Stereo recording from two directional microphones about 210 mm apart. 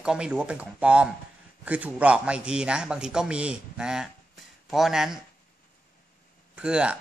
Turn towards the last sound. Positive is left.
turn(degrees=-5)  # may be behind; listen again after turning